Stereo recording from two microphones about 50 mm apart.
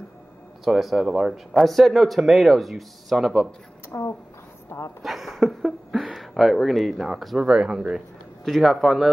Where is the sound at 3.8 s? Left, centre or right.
Left.